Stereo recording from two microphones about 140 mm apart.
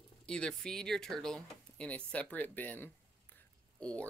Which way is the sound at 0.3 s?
5° left (ahead or behind).